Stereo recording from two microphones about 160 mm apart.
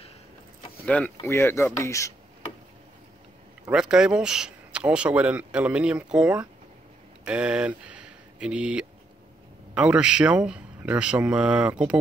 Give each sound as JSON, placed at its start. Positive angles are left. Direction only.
{"t": 0.8, "sound": "speech", "side_deg": 10}
{"t": 3.7, "sound": "speech", "side_deg": -5}